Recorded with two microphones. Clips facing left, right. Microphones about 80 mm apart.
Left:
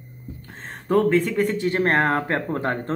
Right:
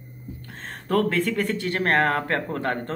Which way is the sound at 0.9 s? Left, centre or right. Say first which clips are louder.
Left 4 dB; centre.